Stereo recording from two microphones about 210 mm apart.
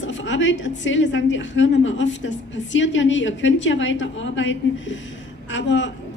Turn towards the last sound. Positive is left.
turn(degrees=60)  # may be behind; listen again after turning